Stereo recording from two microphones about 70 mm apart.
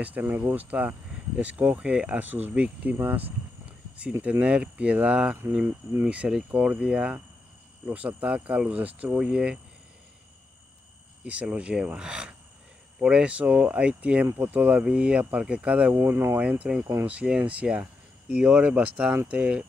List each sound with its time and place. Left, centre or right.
0.0 s speech: right
6.0 s cricket: centre
7.8 s speech: right
11.2 s cricket: centre
13.0 s speech: centre
14.2 s speech: right
14.5 s speech: right
15.9 s speech: right
16.3 s speech: centre
18.4 s cricket: centre